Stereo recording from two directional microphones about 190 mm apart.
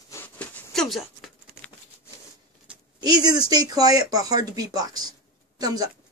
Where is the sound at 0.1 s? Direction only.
10° left (ahead or behind).